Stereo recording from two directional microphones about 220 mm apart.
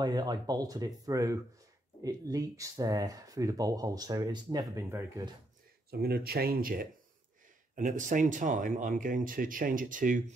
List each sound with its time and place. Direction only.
0.0 s speech: 20° right (ahead or behind)
5.9 s speech: 45° right (ahead or behind)